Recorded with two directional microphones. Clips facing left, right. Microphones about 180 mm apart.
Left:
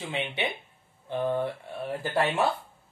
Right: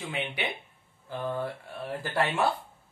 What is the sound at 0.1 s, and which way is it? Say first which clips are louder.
Speech: left 3 dB; 25° left (ahead or behind).